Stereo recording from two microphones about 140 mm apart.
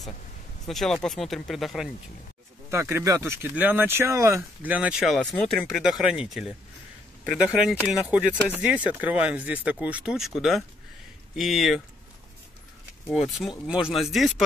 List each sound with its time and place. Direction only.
0.7 s speech: centre (ahead or behind)
2.7 s speech: 20° right (ahead or behind)
4.7 s speech: 5° right (ahead or behind)
5.7 s speech: 5° right (ahead or behind)
13.0 s speech: 5° right (ahead or behind)